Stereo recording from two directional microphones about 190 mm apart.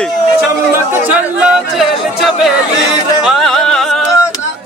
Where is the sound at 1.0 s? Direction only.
5° right (ahead or behind).